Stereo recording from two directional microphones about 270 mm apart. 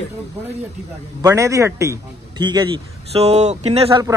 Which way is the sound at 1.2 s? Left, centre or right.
Centre.